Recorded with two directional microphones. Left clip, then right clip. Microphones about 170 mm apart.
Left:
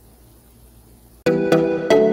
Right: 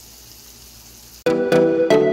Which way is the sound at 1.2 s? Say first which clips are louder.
Right 1 dB; centre (ahead or behind).